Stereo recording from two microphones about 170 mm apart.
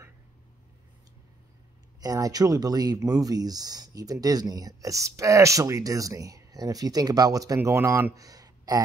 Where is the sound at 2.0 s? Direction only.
20° right (ahead or behind).